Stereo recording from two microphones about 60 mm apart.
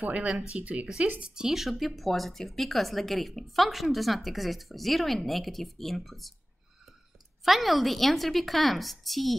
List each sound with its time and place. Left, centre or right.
0.0 s speech: right; by 6.3 s centre
7.4 s speech: centre